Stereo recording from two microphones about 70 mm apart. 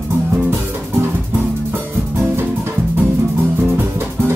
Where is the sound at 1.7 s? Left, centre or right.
Right.